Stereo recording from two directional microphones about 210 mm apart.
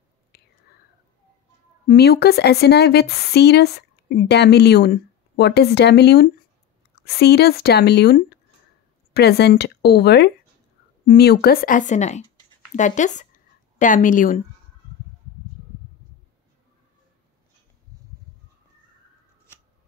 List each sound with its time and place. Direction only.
0.3 s whispering: 50° left (ahead or behind)
1.9 s speech: 50° left (ahead or behind)